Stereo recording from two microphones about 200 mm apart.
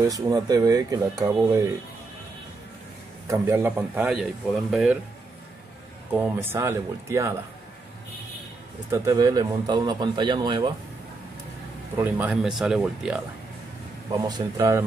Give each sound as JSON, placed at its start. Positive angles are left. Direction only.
{"t": 0.0, "sound": "speech", "side_deg": -20}
{"t": 3.3, "sound": "a man's voice", "side_deg": -10}
{"t": 6.1, "sound": "a man's voice", "side_deg": -10}
{"t": 8.9, "sound": "speech", "side_deg": -15}
{"t": 12.0, "sound": "speech", "side_deg": -10}
{"t": 14.1, "sound": "a man's voice", "side_deg": -15}